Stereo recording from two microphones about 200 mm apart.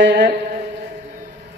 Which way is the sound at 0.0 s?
55° right (ahead or behind).